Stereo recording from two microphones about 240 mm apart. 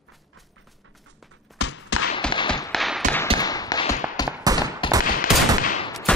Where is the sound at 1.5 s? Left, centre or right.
Left.